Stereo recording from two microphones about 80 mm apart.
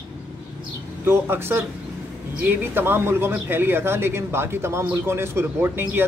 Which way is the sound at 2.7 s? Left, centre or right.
Right.